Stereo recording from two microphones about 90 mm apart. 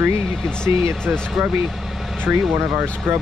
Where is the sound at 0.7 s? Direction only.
25° right (ahead or behind).